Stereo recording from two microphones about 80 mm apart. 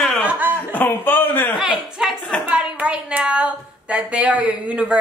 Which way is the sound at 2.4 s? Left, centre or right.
Centre.